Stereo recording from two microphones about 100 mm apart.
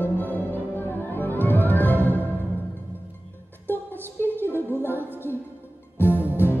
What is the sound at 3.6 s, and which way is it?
Music, 20° left (ahead or behind).